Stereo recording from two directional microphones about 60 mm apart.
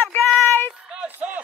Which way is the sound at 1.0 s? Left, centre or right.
Right.